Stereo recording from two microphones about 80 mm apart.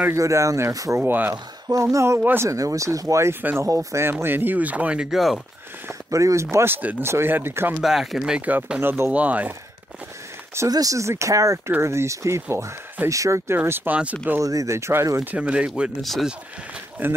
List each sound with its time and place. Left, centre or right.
0.1 s speech: right
0.9 s speech: right
1.3 s speech: right
4.0 s speech: right; by 5.2 s centre
6.0 s speech: right
7.8 s speech: centre
8.8 s speech: right
9.1 s speech: centre
10.7 s speech: right
13.6 s speech: right
14.4 s speech: right
15.3 s speech: centre
16.0 s speech: centre
17.0 s speech: right